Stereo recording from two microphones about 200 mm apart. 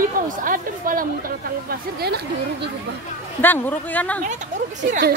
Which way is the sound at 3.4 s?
10° left (ahead or behind).